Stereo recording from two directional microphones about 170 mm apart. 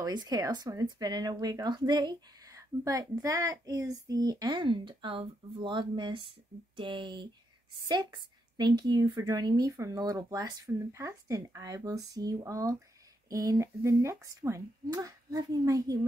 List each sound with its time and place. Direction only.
0.0 s speech: 25° right (ahead or behind)